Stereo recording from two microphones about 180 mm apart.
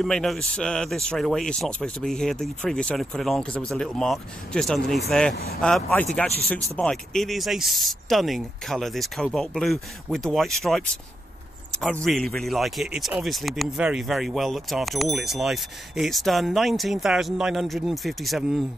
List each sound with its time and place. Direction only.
0.0 s speech: centre (ahead or behind)
5.3 s speech: 60° left (ahead or behind)
5.6 s speech: 5° left (ahead or behind)